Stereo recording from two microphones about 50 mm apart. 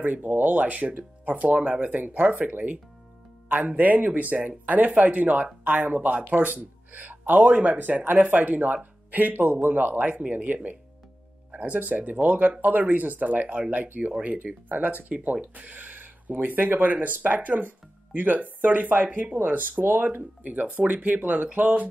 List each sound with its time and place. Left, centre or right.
0.0 s speech: right